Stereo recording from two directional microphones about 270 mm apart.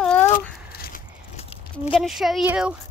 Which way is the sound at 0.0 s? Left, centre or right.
Centre.